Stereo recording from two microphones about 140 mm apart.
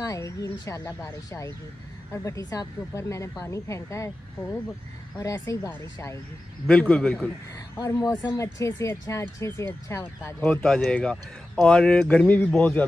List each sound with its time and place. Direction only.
0.0 s speech: 25° left (ahead or behind)
5.2 s speech: 20° left (ahead or behind)
6.7 s speech: 5° left (ahead or behind)
7.7 s speech: 25° left (ahead or behind)
10.6 s speech: 5° left (ahead or behind)